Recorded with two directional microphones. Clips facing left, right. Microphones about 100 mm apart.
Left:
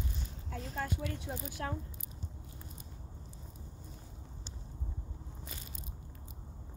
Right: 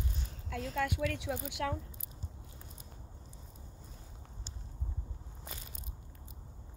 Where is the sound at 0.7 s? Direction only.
80° right.